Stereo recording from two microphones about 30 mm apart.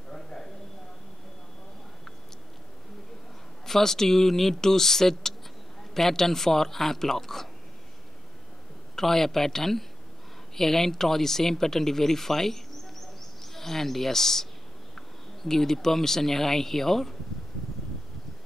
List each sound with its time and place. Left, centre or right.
0.1 s a sound: left
3.6 s speech: centre
8.9 s speech: centre